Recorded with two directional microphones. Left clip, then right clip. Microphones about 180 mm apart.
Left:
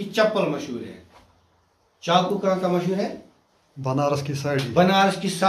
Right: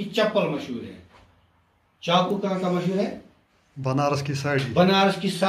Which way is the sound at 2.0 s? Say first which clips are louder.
Left 1 dB; 15° left (ahead or behind).